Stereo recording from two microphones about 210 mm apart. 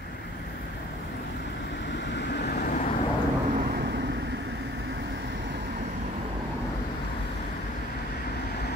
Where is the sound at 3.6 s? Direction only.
50° right (ahead or behind).